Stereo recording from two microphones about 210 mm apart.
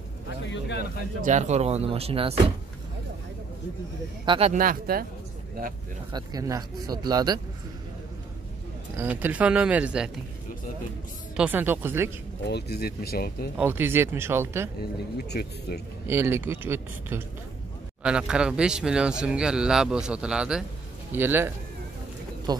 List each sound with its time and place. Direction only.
0.5 s speech: 55° left (ahead or behind)
1.2 s speech: 35° right (ahead or behind)
4.3 s speech: 30° right (ahead or behind)
4.6 s speech: 45° right (ahead or behind)
6.1 s speech: 15° right (ahead or behind)
8.9 s speech: 10° right (ahead or behind)
11.3 s speech: 5° right (ahead or behind)
12.4 s speech: 50° left (ahead or behind)
13.6 s speech: 10° right (ahead or behind)
14.8 s speech: 50° left (ahead or behind)
16.1 s speech: 10° right (ahead or behind)
22.5 s speech: 20° right (ahead or behind)